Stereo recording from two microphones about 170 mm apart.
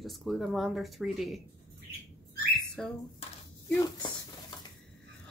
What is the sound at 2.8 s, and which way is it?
Speech, 5° left (ahead or behind).